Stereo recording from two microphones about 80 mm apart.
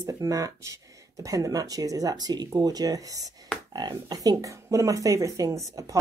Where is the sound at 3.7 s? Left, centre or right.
Right.